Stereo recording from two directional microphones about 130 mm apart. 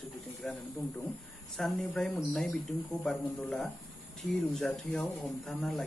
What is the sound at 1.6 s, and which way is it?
Speech, 5° left (ahead or behind).